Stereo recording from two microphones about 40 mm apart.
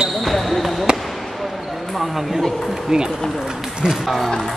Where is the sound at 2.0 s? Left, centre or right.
Centre.